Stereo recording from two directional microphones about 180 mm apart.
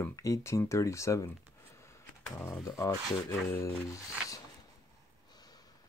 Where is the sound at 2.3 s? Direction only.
15° left (ahead or behind).